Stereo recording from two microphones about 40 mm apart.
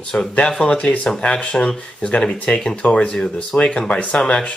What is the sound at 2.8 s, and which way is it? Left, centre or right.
Speech, left.